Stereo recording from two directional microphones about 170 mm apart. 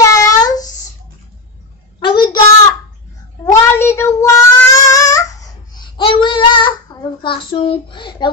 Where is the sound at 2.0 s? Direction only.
25° left (ahead or behind).